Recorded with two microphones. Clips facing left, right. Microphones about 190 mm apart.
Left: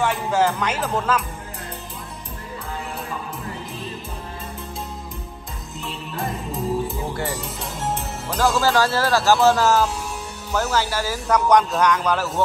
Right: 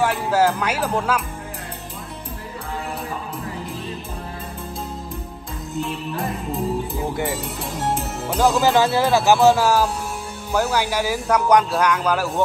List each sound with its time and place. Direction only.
0.0 s speech: 10° right (ahead or behind)
8.3 s speech: 15° right (ahead or behind)